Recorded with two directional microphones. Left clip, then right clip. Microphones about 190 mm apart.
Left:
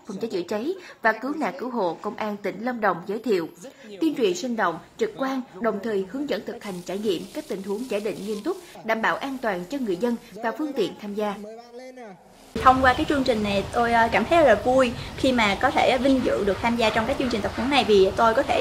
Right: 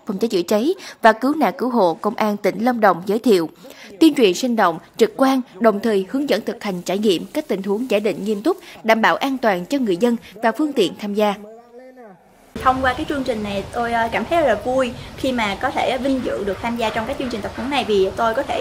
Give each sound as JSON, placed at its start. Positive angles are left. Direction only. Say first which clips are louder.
{"t": 0.2, "sound": "a woman's voice", "louder": "right 9 dB", "side_deg": -45}
{"t": 12.5, "sound": "a woman's voice", "louder": "even", "side_deg": 0}